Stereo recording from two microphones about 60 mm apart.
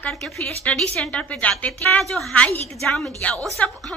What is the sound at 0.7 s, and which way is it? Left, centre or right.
A woman's voice, left.